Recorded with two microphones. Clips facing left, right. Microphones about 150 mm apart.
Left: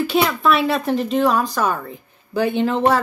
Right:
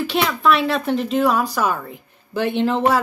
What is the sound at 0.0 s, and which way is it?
A woman's voice, centre (ahead or behind).